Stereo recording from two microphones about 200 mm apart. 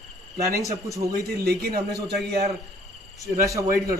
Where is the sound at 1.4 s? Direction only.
50° right (ahead or behind).